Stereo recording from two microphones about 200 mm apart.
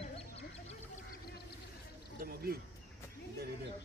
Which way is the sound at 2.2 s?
50° right (ahead or behind).